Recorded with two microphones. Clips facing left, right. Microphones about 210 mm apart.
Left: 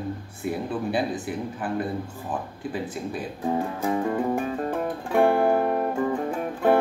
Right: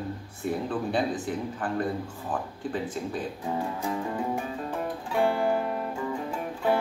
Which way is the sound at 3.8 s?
55° left (ahead or behind).